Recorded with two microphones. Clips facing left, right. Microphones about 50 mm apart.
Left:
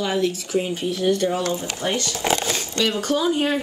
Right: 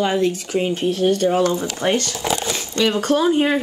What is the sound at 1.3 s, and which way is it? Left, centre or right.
Speech, right.